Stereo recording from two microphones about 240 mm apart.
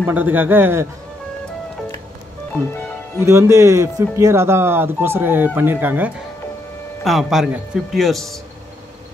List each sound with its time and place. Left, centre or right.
0.0 s speech: centre
3.3 s speech: centre